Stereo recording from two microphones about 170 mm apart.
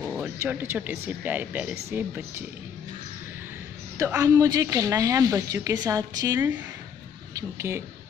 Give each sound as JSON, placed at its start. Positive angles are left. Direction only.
{"t": 0.0, "sound": "a sound", "side_deg": 0}
{"t": 0.4, "sound": "speech", "side_deg": -10}
{"t": 4.2, "sound": "a woman's voice", "side_deg": -20}